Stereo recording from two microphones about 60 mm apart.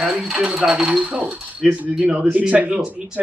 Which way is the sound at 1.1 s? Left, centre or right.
Centre.